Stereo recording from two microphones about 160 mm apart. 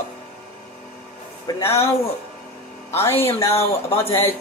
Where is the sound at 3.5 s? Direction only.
40° left (ahead or behind).